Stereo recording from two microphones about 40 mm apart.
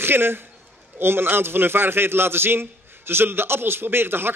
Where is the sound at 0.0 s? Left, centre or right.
Right.